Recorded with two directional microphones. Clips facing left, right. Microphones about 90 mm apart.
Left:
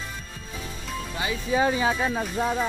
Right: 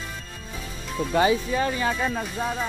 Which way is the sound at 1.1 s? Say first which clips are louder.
Right 12 dB; 65° right (ahead or behind).